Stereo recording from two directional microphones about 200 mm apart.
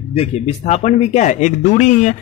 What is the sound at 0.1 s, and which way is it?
Speech, 30° left (ahead or behind).